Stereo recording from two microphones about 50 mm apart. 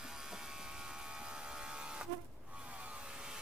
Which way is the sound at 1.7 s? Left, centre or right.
Centre.